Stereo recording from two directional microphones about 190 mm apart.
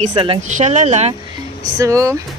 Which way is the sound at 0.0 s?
30° right (ahead or behind).